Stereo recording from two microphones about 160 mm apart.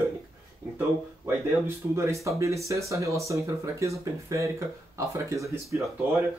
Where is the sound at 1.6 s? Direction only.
15° right (ahead or behind).